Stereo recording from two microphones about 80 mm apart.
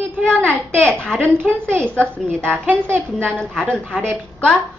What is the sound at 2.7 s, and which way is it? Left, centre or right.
Speech, right.